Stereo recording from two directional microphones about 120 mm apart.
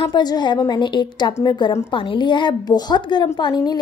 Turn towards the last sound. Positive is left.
turn(degrees=40)  # may be behind; listen again after turning